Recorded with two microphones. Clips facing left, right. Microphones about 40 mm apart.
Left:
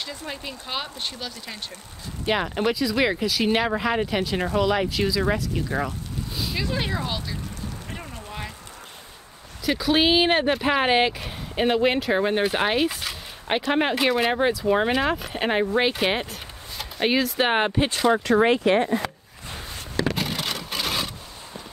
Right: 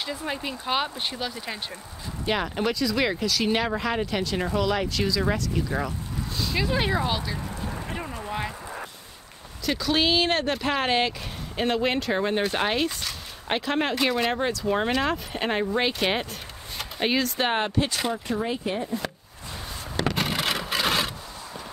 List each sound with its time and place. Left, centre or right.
0.0 s speech: centre
2.2 s speech: centre
6.5 s speech: centre
8.3 s a sound: centre
9.7 s speech: centre
17.6 s speech: left
18.0 s speech: left
20.2 s wood: centre